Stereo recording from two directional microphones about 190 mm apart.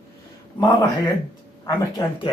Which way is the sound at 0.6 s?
20° left (ahead or behind).